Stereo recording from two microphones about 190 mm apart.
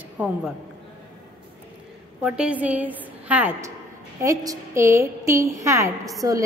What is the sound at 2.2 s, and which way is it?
A woman's voice, 5° right (ahead or behind).